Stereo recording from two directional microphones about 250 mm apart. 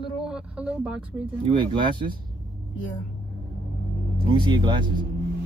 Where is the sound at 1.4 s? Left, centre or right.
Centre.